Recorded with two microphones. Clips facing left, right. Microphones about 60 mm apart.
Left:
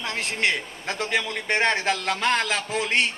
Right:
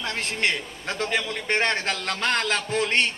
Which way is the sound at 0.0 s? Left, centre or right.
Centre.